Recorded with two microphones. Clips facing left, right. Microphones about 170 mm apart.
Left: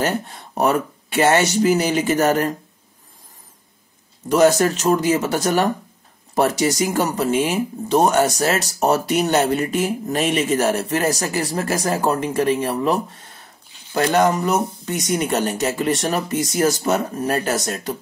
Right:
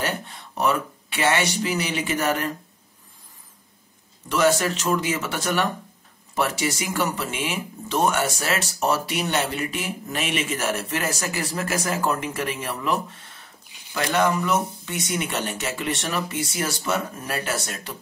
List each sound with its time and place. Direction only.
0.0 s speech: 45° left (ahead or behind)
4.3 s speech: 40° left (ahead or behind)